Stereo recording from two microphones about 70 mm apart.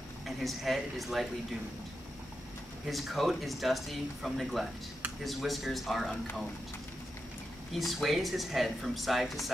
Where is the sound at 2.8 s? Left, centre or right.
Centre.